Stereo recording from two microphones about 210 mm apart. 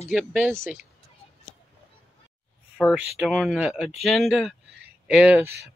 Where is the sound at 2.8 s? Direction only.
Centre (ahead or behind).